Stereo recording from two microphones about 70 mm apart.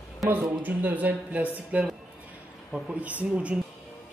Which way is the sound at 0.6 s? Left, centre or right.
Right.